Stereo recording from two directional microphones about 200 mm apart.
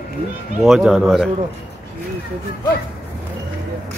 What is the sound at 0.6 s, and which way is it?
Speech, centre (ahead or behind).